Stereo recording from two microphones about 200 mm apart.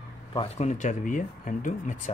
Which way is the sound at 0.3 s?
30° left (ahead or behind).